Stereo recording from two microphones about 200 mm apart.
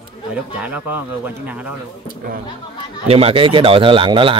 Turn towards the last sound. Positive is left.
turn(degrees=-25)  # may be behind; listen again after turning